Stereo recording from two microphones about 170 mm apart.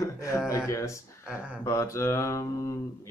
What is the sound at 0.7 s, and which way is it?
Speech, 15° left (ahead or behind).